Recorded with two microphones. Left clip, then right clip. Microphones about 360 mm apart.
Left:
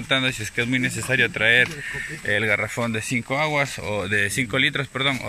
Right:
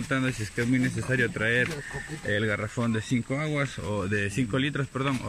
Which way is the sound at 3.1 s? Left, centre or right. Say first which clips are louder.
Left 4 dB; left.